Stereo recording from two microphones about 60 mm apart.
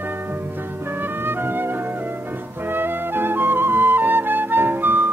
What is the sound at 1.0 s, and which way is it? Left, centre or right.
Music, right.